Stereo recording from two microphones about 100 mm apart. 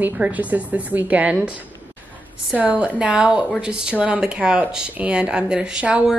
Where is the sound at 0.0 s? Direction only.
15° right (ahead or behind).